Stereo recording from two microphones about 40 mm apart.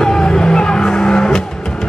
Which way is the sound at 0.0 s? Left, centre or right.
Centre.